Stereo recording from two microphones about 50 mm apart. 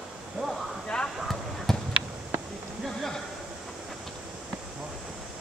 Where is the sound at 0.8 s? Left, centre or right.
Centre.